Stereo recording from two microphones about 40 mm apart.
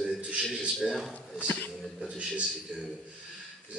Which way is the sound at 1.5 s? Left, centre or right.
Left.